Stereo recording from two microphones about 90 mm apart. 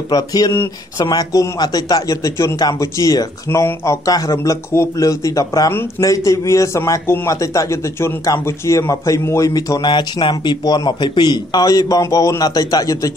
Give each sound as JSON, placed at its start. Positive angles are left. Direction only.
{"t": 0.1, "sound": "a man's voice", "side_deg": 45}
{"t": 9.5, "sound": "speech", "side_deg": 45}